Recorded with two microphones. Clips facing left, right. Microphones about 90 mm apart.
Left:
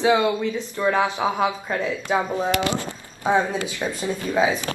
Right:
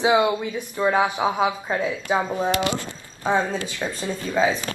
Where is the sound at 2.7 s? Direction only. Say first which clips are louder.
Left 2 dB; 20° left (ahead or behind).